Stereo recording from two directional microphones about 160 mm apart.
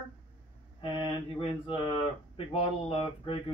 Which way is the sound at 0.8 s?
30° left (ahead or behind).